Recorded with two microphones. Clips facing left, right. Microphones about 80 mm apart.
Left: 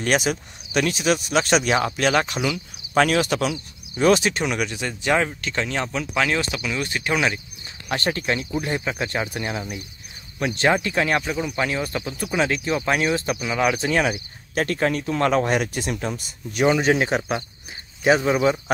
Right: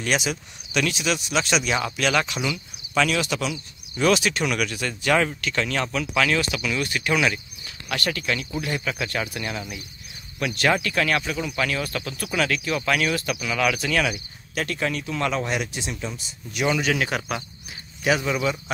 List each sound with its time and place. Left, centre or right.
0.0 s speech: left
4.0 s speech: left
16.6 s speech: left